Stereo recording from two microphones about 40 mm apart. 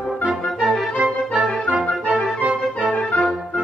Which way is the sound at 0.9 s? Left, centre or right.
Centre.